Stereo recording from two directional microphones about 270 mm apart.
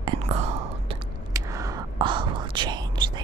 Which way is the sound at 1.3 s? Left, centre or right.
Centre.